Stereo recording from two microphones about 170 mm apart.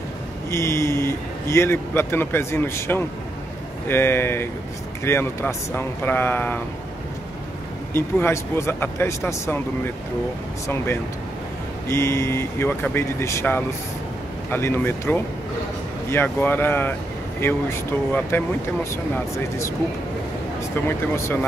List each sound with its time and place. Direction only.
0.5 s speech: 15° left (ahead or behind)
7.9 s speech: 15° left (ahead or behind)
11.9 s speech: 15° left (ahead or behind)
21.2 s speech: 15° left (ahead or behind)